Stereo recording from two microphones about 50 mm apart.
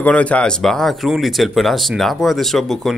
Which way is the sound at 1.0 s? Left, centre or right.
Centre.